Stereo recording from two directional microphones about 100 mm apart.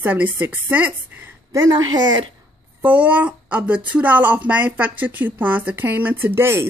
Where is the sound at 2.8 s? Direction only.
15° right (ahead or behind).